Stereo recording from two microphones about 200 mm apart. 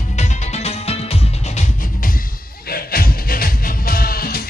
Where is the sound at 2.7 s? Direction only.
50° left (ahead or behind).